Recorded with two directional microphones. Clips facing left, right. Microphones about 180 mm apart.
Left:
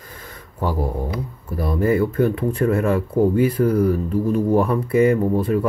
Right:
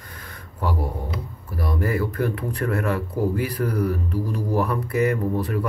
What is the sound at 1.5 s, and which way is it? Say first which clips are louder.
Speech: left 6 dB; 25° left (ahead or behind).